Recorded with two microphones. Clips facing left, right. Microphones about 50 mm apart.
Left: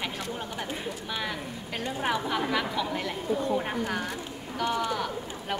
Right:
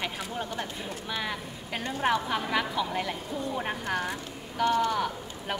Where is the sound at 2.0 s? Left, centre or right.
Centre.